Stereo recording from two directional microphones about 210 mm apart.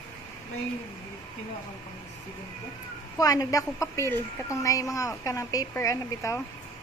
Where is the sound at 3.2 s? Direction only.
15° left (ahead or behind).